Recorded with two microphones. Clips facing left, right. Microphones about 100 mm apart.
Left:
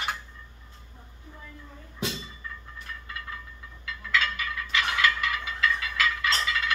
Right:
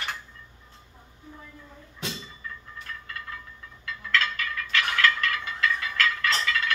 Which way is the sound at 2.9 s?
15° left (ahead or behind).